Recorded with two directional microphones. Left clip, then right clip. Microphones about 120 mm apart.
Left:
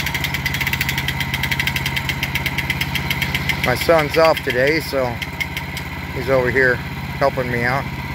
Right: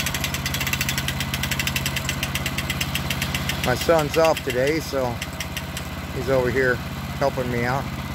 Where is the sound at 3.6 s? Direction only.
15° right (ahead or behind).